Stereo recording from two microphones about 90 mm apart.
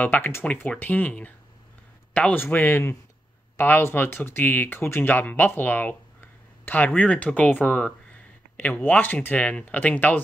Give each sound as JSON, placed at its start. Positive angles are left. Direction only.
{"t": 0.0, "sound": "speech", "side_deg": 20}